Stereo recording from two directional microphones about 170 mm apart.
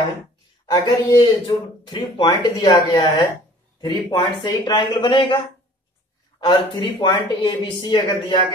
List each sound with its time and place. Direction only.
0.7 s speech: 25° left (ahead or behind)
6.4 s speech: 25° left (ahead or behind)